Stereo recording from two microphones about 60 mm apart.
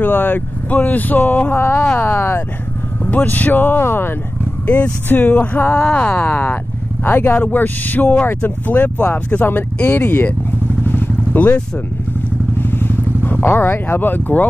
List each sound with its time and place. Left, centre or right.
0.0 s speech: left
1.5 s speech: left
3.0 s speech: left
4.6 s speech: left
10.9 s vehicle: left
12.5 s vehicle: left